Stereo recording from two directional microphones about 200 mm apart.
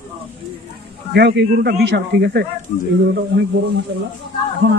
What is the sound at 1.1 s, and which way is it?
Speech, 55° right (ahead or behind).